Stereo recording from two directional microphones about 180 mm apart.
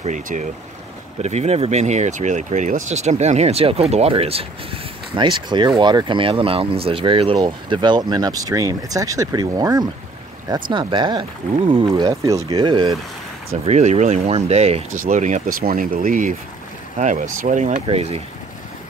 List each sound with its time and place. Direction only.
0.0 s speech: 45° right (ahead or behind)
12.1 s speech: 20° right (ahead or behind)
13.5 s speech: 35° right (ahead or behind)